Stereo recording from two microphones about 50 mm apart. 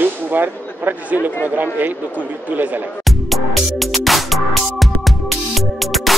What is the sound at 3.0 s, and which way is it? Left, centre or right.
Music, centre.